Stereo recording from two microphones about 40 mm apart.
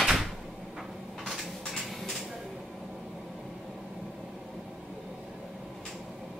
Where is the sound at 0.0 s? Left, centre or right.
Centre.